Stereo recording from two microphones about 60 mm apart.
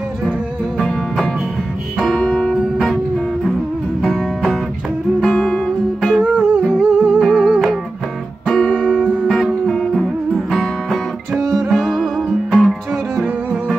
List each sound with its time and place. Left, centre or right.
2.0 s music: centre
4.0 s music: centre
6.1 s music: centre
9.3 s music: centre